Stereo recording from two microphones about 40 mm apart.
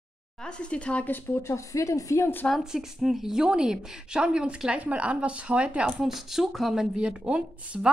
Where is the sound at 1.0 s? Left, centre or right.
Left.